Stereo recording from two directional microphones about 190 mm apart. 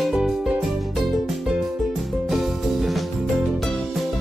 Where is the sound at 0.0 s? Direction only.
Centre (ahead or behind).